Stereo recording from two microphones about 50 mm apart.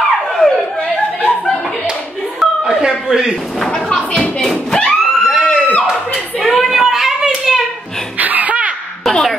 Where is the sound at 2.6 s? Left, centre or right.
Centre.